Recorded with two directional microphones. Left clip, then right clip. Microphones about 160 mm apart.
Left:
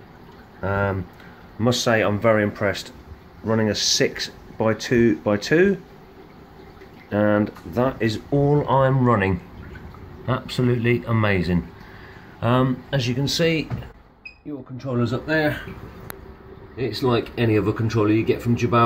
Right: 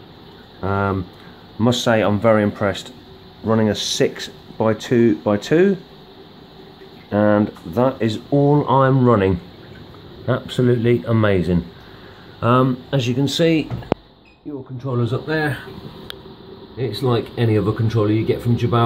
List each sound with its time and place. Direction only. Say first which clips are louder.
0.6 s speech: right 2 dB; centre (ahead or behind)
7.1 s speech: right 3 dB; centre (ahead or behind)
14.8 s speech: right 1 dB; 5° left (ahead or behind)
16.8 s speech: right 1 dB; centre (ahead or behind)